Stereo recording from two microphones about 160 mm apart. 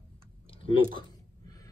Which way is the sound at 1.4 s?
25° left (ahead or behind).